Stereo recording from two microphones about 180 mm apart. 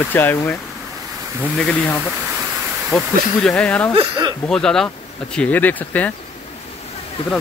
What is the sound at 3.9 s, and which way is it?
Speech, 25° right (ahead or behind).